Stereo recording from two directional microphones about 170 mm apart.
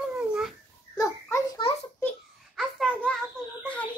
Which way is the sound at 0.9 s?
20° left (ahead or behind).